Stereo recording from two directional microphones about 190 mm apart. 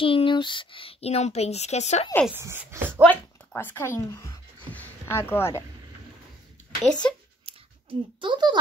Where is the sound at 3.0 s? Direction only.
10° left (ahead or behind).